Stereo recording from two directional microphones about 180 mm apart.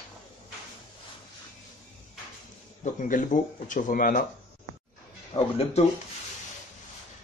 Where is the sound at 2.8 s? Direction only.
45° left (ahead or behind).